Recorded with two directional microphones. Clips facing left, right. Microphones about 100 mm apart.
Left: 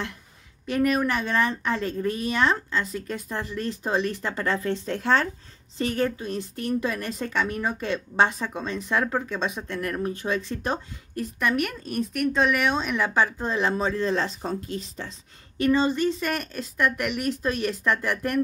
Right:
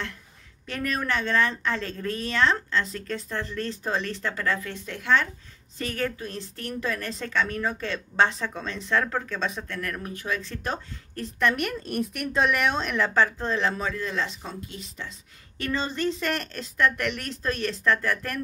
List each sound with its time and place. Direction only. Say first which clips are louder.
0.7 s speech: left 6 dB; 15° left (ahead or behind); by 5.3 s 35° left (ahead or behind)
5.8 s speech: left 4 dB; 20° left (ahead or behind)
11.3 s speech: right 1 dB; 5° left (ahead or behind); by 15.1 s 35° left (ahead or behind)
15.5 s speech: left 8 dB; 15° left (ahead or behind)